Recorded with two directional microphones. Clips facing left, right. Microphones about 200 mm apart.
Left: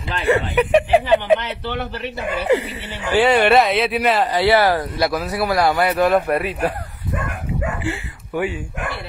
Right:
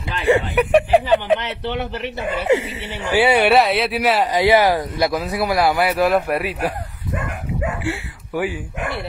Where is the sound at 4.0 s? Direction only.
15° right (ahead or behind).